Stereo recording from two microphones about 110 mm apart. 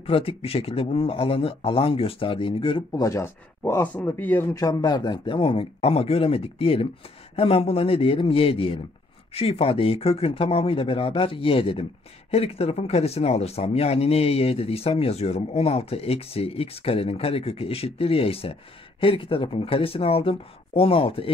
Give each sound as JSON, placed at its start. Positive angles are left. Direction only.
{"t": 0.0, "sound": "speech", "side_deg": 60}
{"t": 2.9, "sound": "speech", "side_deg": 30}
{"t": 4.6, "sound": "speech", "side_deg": 35}